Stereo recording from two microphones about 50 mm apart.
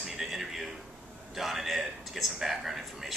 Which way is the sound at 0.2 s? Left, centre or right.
Centre.